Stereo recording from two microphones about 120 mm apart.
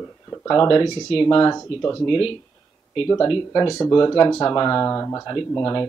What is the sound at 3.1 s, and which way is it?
Speech, 30° left (ahead or behind).